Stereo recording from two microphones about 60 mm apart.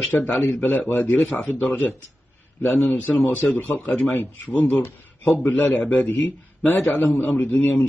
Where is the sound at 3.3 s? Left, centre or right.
Left.